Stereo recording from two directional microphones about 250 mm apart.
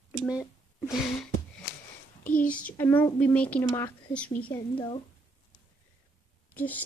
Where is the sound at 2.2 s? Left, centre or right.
Left.